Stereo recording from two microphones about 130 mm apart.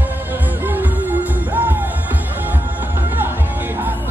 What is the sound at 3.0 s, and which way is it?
Music, 15° right (ahead or behind).